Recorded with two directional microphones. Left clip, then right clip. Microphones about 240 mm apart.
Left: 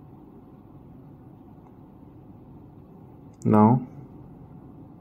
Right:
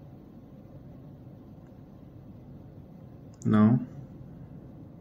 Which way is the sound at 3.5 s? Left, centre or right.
Centre.